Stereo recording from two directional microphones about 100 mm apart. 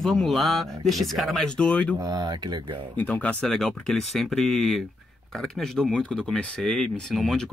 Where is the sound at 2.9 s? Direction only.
15° left (ahead or behind).